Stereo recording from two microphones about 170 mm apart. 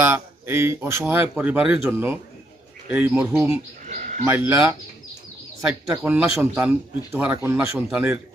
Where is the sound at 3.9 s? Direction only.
50° right (ahead or behind).